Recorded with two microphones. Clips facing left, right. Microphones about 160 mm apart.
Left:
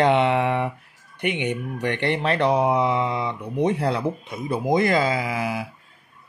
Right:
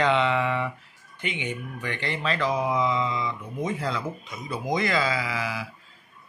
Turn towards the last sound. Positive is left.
turn(degrees=50)  # may be behind; listen again after turning